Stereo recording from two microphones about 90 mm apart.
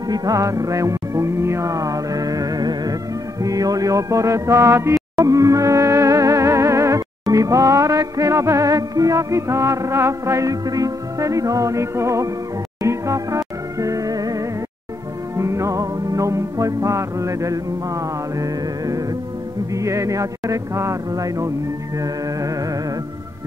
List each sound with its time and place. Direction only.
0.1 s music: 45° right (ahead or behind)